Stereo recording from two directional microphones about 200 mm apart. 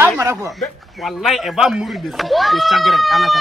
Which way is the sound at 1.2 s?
Centre (ahead or behind).